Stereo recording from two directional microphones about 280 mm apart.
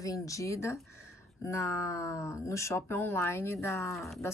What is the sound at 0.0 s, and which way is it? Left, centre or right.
Speech, centre.